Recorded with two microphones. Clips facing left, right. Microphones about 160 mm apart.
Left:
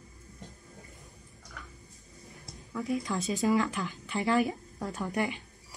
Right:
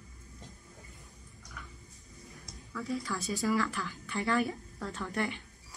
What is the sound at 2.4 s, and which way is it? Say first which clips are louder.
A woman's voice: left 4 dB; 20° left (ahead or behind).